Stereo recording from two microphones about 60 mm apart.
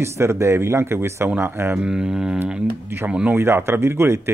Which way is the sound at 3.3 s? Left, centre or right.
Right.